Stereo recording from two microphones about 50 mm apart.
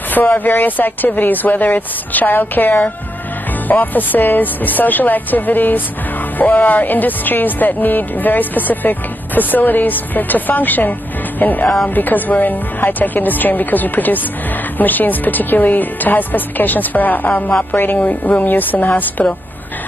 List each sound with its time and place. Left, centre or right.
0.1 s speech: left